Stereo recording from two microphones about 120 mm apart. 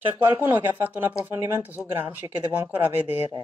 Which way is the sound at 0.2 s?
20° right (ahead or behind).